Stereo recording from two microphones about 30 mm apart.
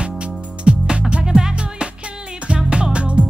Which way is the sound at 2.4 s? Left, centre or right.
Right.